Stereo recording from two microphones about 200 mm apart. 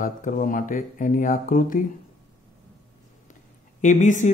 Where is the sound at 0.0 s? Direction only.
40° left (ahead or behind).